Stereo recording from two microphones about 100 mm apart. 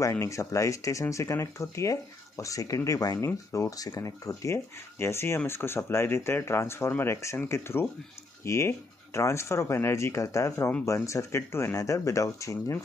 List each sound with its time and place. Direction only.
0.0 s speech: 30° left (ahead or behind)